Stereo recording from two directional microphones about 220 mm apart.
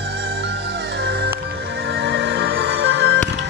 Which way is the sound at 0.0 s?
45° right (ahead or behind).